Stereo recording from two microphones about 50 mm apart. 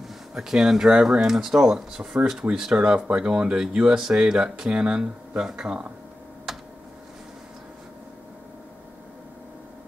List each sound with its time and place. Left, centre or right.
0.3 s speech: centre
5.4 s speech: centre
6.5 s a sound: centre